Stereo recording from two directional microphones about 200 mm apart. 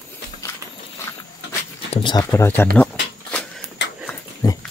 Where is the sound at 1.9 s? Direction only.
25° left (ahead or behind).